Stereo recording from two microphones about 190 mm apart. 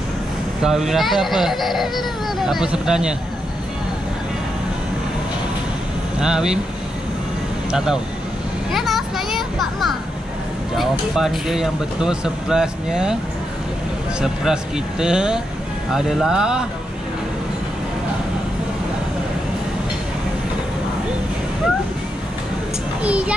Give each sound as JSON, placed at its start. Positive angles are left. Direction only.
{"t": 0.6, "sound": "speech", "side_deg": 0}
{"t": 6.1, "sound": "speech", "side_deg": -5}
{"t": 7.7, "sound": "speech", "side_deg": -5}
{"t": 8.7, "sound": "children playing", "side_deg": 0}
{"t": 10.8, "sound": "speech", "side_deg": 0}
{"t": 14.2, "sound": "speech", "side_deg": -5}
{"t": 23.0, "sound": "a child's voice", "side_deg": -5}